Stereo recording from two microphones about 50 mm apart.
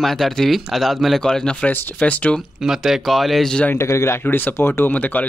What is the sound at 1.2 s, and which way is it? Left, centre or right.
Speech, centre.